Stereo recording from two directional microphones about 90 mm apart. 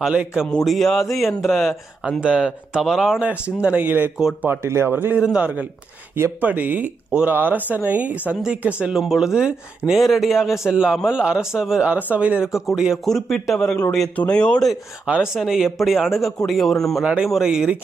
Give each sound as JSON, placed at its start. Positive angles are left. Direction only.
{"t": 0.0, "sound": "speech", "side_deg": -10}
{"t": 0.7, "sound": "a man's voice", "side_deg": 0}
{"t": 15.0, "sound": "a man's voice", "side_deg": -10}
{"t": 17.0, "sound": "speech", "side_deg": -15}